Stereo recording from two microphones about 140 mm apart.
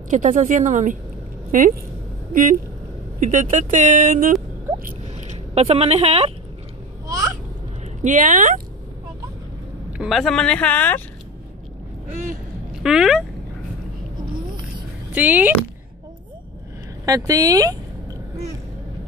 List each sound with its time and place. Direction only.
0.1 s speech: 60° right (ahead or behind)
3.2 s speech: 65° right (ahead or behind)
5.1 s speech: 45° right (ahead or behind)
7.1 s babbling: 25° right (ahead or behind)
8.0 s speech: 65° right (ahead or behind)
9.9 s speech: centre (ahead or behind)
12.8 s speech: 5° right (ahead or behind)
15.1 s speech: 10° right (ahead or behind)
17.0 s speech: 25° right (ahead or behind)